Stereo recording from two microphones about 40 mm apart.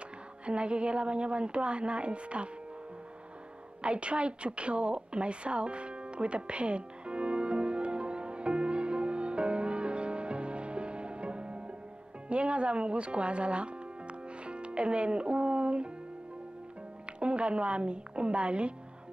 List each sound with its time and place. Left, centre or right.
0.5 s a woman's voice: right
3.8 s a sound: right
12.3 s music: right
17.2 s a woman's voice: right